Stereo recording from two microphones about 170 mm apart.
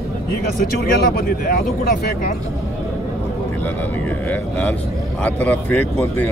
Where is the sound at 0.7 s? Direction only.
65° left (ahead or behind).